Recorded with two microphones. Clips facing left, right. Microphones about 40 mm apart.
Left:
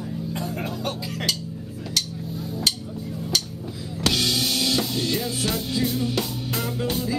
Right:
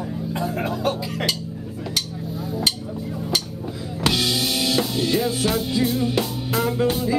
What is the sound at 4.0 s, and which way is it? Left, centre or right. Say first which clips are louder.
Music: right 2 dB; centre.